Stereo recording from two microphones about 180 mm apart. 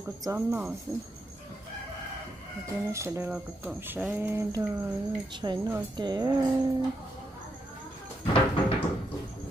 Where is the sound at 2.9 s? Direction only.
15° right (ahead or behind).